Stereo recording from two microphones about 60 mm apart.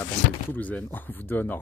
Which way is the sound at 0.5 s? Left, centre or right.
Left.